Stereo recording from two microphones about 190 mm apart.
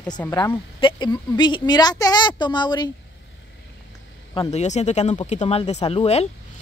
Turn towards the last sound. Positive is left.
turn(degrees=35)  # may be behind; listen again after turning